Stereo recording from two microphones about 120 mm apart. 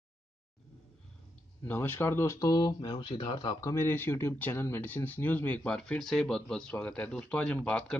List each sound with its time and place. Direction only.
1.6 s speech: 20° left (ahead or behind); by 3.5 s 40° left (ahead or behind)
3.6 s speech: 20° left (ahead or behind)